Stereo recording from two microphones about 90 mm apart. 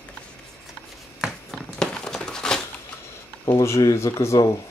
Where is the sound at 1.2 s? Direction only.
5° left (ahead or behind).